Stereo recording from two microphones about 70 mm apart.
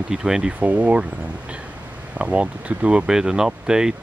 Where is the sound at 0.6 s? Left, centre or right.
Centre.